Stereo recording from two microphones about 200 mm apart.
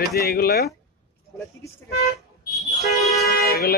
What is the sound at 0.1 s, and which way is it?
Speech, 50° left (ahead or behind).